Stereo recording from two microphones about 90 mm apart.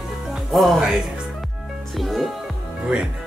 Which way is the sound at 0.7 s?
10° right (ahead or behind).